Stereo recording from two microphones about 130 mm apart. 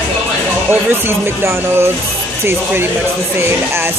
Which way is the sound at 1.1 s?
20° right (ahead or behind).